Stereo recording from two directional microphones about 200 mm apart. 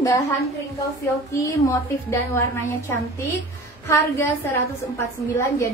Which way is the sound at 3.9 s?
10° left (ahead or behind).